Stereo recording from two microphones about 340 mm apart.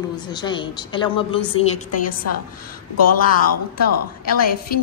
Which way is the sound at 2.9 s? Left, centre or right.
Left.